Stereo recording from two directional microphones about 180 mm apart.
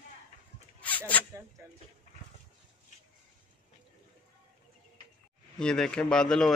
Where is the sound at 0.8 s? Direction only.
10° left (ahead or behind).